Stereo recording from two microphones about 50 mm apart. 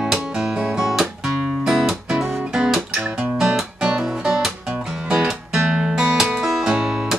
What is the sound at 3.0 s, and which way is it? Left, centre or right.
Music, right.